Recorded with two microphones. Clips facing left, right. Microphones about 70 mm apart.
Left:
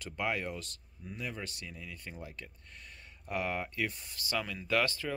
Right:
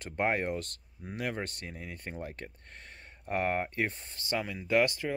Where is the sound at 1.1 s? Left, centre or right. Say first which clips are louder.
Right 6 dB; right.